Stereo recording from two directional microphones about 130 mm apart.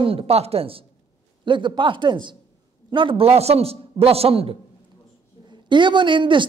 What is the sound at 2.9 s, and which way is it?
A man's voice, 40° right (ahead or behind).